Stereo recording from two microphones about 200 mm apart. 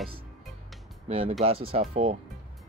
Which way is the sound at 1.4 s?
30° right (ahead or behind).